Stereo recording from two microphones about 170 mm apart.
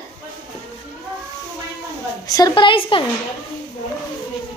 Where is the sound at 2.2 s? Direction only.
25° left (ahead or behind).